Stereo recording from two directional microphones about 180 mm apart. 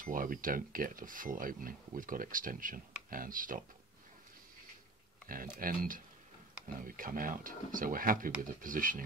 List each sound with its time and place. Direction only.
0.0 s speech: 50° right (ahead or behind)
5.3 s speech: 50° right (ahead or behind)